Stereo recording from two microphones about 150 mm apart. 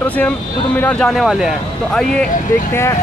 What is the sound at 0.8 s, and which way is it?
Speech, 5° left (ahead or behind).